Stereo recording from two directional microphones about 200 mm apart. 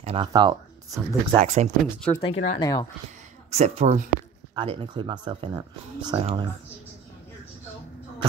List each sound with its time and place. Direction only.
0.0 s speech: 25° right (ahead or behind)
1.4 s speech: 35° right (ahead or behind)
2.0 s speech: 5° left (ahead or behind)
2.2 s speech: 30° left (ahead or behind)
2.6 s speech: 20° left (ahead or behind)
3.4 s speech: 35° right (ahead or behind)
4.6 s speech: 25° right (ahead or behind)